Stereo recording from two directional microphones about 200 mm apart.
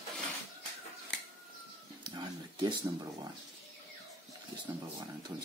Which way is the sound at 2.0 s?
20° right (ahead or behind).